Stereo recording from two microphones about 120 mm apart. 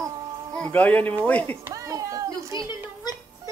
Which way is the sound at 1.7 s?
30° right (ahead or behind).